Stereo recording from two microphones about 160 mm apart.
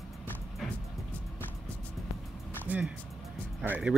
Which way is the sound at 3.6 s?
10° right (ahead or behind).